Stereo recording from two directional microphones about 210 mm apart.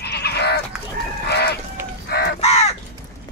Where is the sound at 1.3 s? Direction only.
50° left (ahead or behind).